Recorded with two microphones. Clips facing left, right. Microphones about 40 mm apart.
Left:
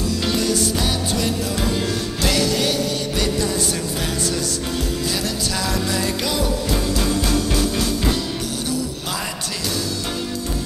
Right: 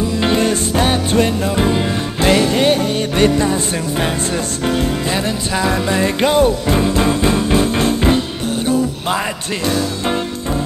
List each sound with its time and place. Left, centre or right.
0.1 s music: right
4.6 s music: right